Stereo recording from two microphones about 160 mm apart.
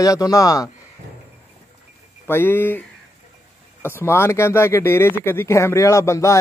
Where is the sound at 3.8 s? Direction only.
15° left (ahead or behind).